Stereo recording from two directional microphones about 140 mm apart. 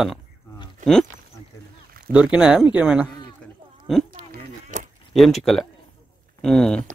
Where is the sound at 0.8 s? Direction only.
65° right (ahead or behind).